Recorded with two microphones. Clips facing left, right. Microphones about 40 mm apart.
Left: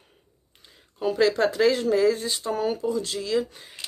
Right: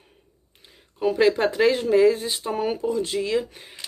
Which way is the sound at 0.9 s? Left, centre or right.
Centre.